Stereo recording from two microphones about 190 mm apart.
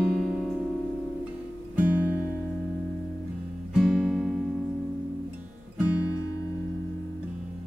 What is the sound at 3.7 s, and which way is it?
Music, centre (ahead or behind).